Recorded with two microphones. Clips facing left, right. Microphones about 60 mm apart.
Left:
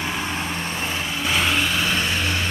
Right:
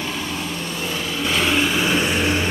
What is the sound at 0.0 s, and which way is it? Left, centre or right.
Vehicle, left.